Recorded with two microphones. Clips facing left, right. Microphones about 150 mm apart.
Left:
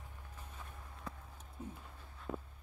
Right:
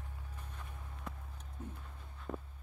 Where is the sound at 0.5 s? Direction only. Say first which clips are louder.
Right 1 dB; centre (ahead or behind).